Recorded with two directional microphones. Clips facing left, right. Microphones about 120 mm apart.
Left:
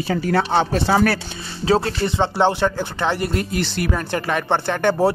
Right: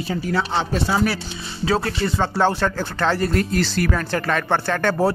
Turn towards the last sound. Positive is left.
turn(degrees=20)  # may be behind; listen again after turning